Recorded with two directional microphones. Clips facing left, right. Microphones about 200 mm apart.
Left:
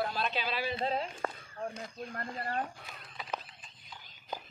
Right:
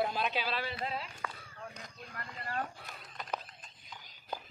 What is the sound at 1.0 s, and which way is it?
Speech, 50° left (ahead or behind).